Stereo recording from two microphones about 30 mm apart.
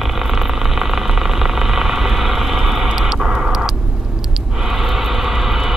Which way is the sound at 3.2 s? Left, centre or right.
Right.